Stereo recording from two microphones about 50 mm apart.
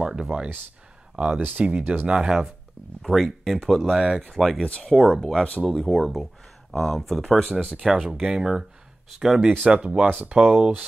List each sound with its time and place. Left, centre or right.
0.0 s speech: centre
1.3 s speech: right
1.6 s speech: right
3.0 s speech: centre
7.7 s speech: centre
9.7 s speech: right